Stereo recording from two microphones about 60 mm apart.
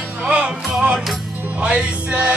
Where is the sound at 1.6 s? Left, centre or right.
Centre.